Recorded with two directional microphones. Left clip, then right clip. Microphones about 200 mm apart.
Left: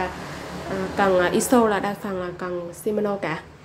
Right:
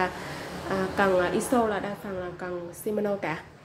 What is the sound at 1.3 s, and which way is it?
A woman's voice, 15° left (ahead or behind).